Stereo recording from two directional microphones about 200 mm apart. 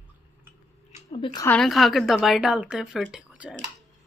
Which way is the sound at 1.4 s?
Centre (ahead or behind).